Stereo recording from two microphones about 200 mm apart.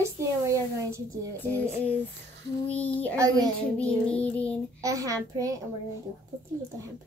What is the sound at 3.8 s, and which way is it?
Music, 5° left (ahead or behind).